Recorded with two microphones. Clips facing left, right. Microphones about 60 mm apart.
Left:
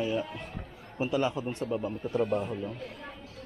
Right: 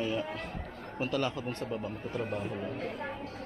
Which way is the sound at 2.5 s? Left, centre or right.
Right.